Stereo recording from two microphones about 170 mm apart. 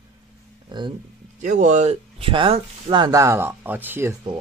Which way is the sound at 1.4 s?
50° right (ahead or behind).